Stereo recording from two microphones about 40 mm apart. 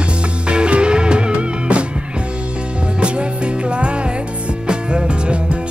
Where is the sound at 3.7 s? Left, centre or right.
Right.